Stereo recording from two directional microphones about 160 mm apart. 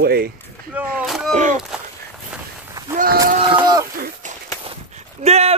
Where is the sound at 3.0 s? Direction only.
65° right (ahead or behind).